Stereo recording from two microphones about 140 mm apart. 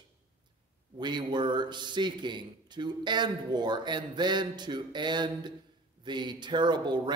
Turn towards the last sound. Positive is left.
turn(degrees=-30)  # may be behind; listen again after turning